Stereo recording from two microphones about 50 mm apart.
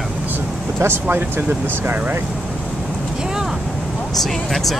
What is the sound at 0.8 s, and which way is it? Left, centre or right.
Speech, right.